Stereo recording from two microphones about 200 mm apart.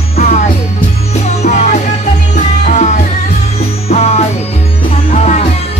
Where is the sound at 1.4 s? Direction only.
35° left (ahead or behind).